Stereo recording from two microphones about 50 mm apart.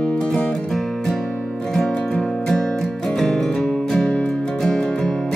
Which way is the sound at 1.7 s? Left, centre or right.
Centre.